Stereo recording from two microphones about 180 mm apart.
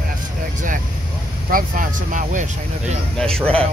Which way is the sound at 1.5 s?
50° right (ahead or behind).